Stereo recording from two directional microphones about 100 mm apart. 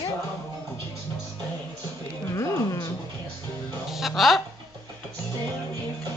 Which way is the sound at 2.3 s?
30° left (ahead or behind).